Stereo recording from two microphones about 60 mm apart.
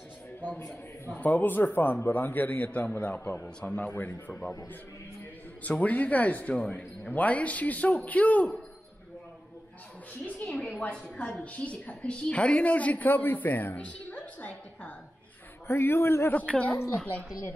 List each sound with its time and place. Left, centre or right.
1.1 s a man's voice: left
3.4 s speech: centre
3.8 s a woman's voice: left
4.3 s speech: centre
5.6 s a woman's voice: left
10.8 s a woman's voice: left
13.8 s a woman's voice: centre
15.6 s a man's voice: left
16.3 s a woman's voice: left